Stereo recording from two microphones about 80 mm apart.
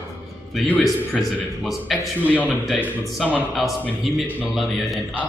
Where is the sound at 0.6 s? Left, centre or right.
Centre.